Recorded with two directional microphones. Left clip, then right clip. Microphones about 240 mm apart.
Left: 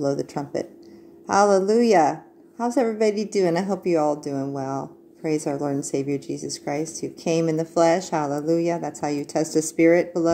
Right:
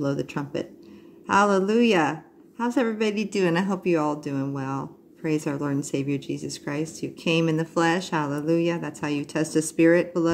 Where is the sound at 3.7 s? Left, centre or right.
Right.